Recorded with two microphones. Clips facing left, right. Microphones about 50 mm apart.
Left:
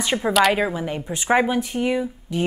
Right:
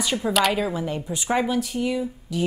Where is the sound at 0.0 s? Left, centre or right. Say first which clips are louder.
Left 2 dB; left.